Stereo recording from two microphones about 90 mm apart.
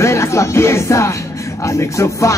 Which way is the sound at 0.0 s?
35° left (ahead or behind).